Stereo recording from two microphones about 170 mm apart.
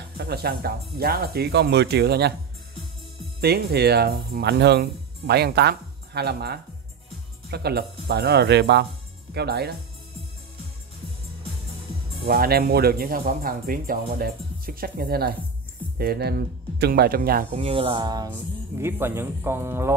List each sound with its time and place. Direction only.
0.2 s speech: 70° right (ahead or behind)
3.3 s speech: 70° right (ahead or behind); by 8.8 s 90° right
9.3 s speech: 75° right (ahead or behind)
12.3 s speech: 65° right (ahead or behind)
17.6 s speech: 35° right (ahead or behind)
18.8 s speech: 15° right (ahead or behind)